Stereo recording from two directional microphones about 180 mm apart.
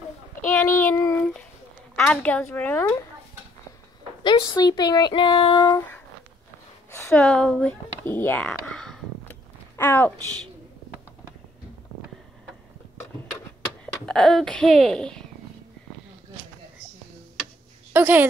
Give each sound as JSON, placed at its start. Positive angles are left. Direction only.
{"t": 0.5, "sound": "a sound", "side_deg": 10}
{"t": 2.0, "sound": "speech", "side_deg": 5}
{"t": 4.2, "sound": "speech", "side_deg": 25}
{"t": 14.0, "sound": "speech", "side_deg": 0}
{"t": 17.9, "sound": "a woman's voice", "side_deg": -10}